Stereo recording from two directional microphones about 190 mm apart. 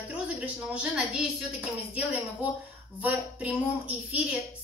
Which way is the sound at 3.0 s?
10° right (ahead or behind).